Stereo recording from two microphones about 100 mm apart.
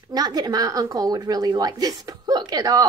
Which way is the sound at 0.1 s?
40° right (ahead or behind).